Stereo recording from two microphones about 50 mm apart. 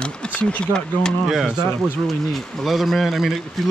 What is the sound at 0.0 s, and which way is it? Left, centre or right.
Speech, left.